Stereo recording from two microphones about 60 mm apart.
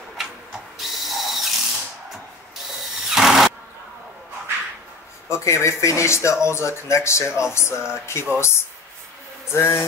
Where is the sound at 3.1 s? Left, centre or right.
Centre.